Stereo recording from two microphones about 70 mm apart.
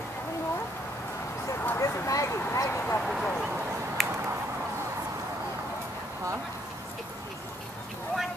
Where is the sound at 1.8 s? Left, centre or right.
Left.